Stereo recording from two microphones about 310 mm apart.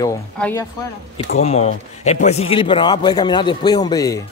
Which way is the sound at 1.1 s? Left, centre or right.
Centre.